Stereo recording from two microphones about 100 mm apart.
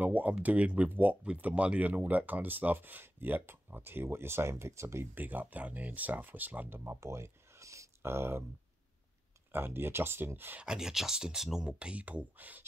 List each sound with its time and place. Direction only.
0.0 s speech: 15° right (ahead or behind)
9.5 s speech: 20° right (ahead or behind)
10.6 s speech: 5° right (ahead or behind)